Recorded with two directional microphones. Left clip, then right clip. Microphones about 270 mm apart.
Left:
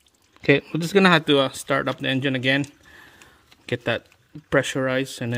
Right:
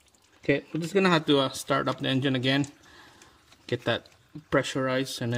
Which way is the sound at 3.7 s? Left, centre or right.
Centre.